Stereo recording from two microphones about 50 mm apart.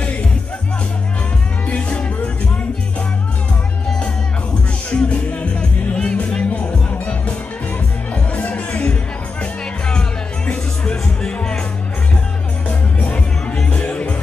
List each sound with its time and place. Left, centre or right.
1.7 s music: left
4.9 s music: left
8.1 s music: left
12.6 s music: left